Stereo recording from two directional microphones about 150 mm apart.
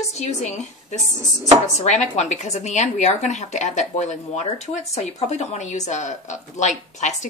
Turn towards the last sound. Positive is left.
turn(degrees=50)  # may be behind; listen again after turning